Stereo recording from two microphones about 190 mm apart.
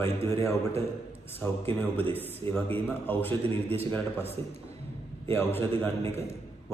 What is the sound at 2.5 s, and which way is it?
Speech, 10° left (ahead or behind).